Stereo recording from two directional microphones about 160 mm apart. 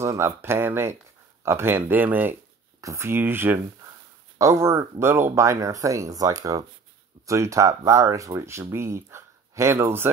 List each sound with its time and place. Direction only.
0.0 s speech: 15° right (ahead or behind)